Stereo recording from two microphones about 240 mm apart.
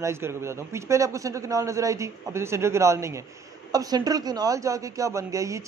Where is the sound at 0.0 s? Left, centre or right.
Centre.